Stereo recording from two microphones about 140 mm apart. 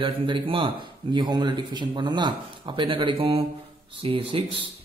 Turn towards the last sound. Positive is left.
turn(degrees=-40)  # may be behind; listen again after turning